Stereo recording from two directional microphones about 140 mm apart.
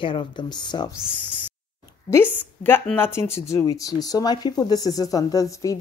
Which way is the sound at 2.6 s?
15° left (ahead or behind).